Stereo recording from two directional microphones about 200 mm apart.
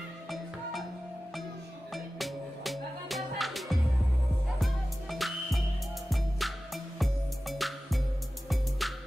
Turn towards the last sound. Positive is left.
turn(degrees=0)  # may be behind; listen again after turning